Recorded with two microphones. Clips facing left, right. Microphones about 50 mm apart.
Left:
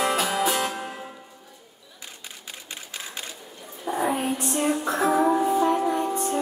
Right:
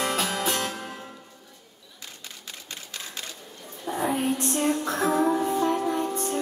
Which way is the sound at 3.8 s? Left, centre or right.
Centre.